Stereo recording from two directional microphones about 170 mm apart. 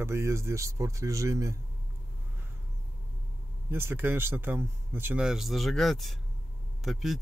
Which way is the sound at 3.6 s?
15° right (ahead or behind).